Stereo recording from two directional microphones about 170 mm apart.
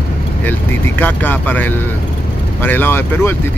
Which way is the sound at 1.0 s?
10° left (ahead or behind).